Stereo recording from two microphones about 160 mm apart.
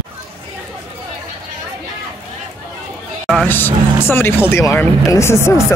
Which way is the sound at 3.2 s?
5° left (ahead or behind).